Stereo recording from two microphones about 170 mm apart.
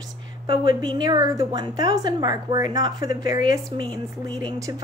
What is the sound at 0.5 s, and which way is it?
A woman's voice, 25° right (ahead or behind).